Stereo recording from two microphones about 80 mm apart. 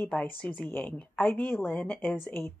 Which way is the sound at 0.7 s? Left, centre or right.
Left.